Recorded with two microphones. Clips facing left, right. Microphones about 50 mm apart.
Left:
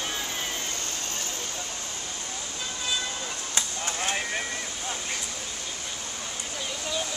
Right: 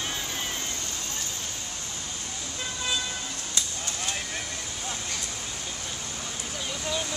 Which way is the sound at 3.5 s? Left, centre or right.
Left.